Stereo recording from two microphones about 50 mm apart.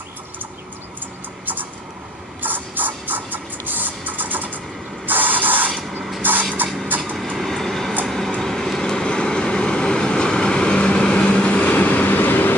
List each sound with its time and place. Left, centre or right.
1.4 s vehicle: right
2.4 s music: right
5.0 s spray: right
6.2 s music: right
6.6 s vehicle: right
7.3 s train: centre
8.4 s vehicle: centre; by 11.7 s left
11.7 s vehicle: left